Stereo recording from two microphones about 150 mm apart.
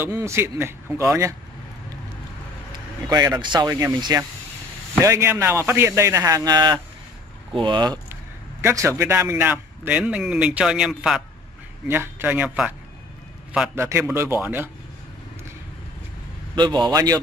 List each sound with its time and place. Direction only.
0.0 s a man's voice: 20° right (ahead or behind)
3.1 s a man's voice: 25° right (ahead or behind)
8.6 s a man's voice: 15° right (ahead or behind); by 11.2 s centre (ahead or behind)
11.9 s a man's voice: 15° right (ahead or behind)
16.5 s a man's voice: 30° right (ahead or behind)